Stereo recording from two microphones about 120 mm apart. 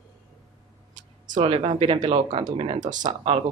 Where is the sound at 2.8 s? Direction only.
90° right.